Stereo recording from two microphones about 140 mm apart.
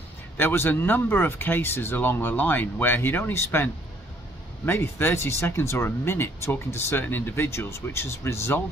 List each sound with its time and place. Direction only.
0.4 s speech: 15° left (ahead or behind)